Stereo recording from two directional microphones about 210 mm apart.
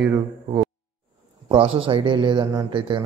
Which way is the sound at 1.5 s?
25° right (ahead or behind).